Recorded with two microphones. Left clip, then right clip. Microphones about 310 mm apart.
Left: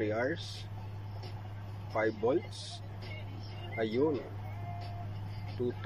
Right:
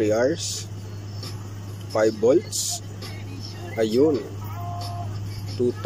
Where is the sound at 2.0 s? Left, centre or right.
Centre.